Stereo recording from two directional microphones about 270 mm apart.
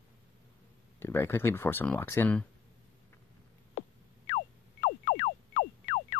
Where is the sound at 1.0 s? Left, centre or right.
Centre.